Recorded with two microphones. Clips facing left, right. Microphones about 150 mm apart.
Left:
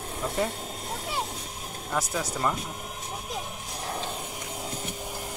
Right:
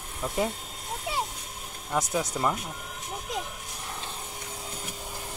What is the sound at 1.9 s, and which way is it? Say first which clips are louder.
Speech: right 2 dB; 15° right (ahead or behind).